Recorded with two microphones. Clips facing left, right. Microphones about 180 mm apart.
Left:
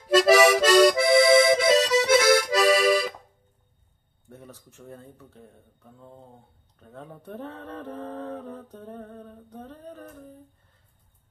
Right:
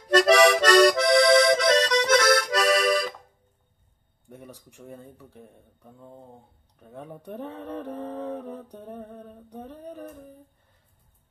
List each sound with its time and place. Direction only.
0.1 s accordion: 5° left (ahead or behind)
4.3 s speech: 15° right (ahead or behind)
6.8 s mantra: 15° right (ahead or behind)